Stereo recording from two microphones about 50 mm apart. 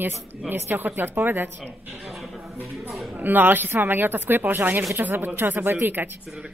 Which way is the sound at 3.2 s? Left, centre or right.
Right.